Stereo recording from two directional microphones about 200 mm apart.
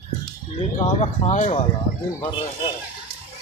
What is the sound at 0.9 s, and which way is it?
Speech, 35° left (ahead or behind).